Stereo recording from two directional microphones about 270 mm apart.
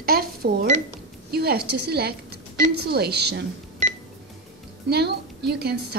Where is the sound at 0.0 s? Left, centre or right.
Right.